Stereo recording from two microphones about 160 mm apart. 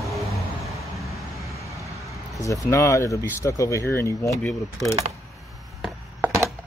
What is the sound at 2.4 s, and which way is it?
Speech, 20° left (ahead or behind).